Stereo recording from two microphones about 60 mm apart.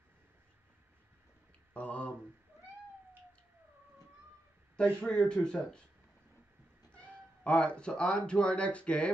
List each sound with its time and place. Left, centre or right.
1.7 s speech: left
5.0 s speech: centre
6.9 s speech: left